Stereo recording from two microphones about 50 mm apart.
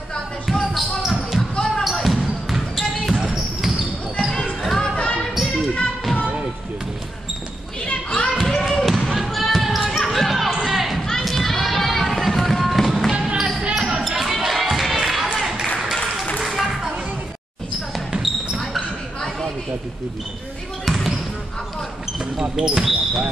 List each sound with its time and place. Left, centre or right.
0.5 s basketball bounce: centre
4.8 s music: centre
5.3 s basketball bounce: centre
7.8 s basketball bounce: centre
8.5 s basketball bounce: centre
13.7 s music: centre
15.6 s a sound: centre
17.9 s basketball bounce: centre
20.8 s basketball bounce: centre
22.2 s basketball bounce: centre